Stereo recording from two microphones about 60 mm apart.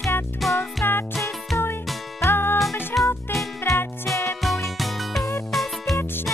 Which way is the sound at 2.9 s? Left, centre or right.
Centre.